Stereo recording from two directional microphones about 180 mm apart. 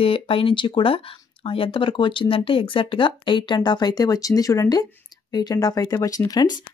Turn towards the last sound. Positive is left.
turn(degrees=20)  # may be behind; listen again after turning